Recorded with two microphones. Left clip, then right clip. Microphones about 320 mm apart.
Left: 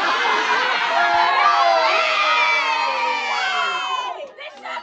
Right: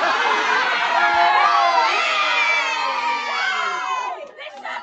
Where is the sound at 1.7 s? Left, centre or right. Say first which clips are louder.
Left 1 dB; left.